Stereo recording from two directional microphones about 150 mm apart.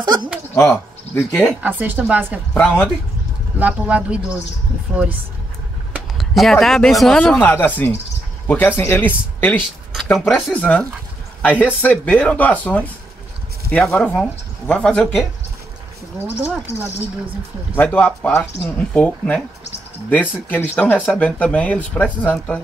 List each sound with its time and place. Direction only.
0.0 s speech: 30° right (ahead or behind)
0.6 s speech: 15° left (ahead or behind)
1.5 s speech: 10° right (ahead or behind)
2.5 s speech: 10° left (ahead or behind)
3.5 s speech: 10° right (ahead or behind)
5.9 s speech: centre (ahead or behind)
7.3 s speech: 15° left (ahead or behind)
16.2 s speech: 15° right (ahead or behind)
17.7 s speech: 10° left (ahead or behind)